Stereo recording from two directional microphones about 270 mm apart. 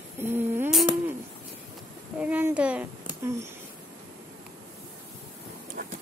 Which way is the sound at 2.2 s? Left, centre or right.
Centre.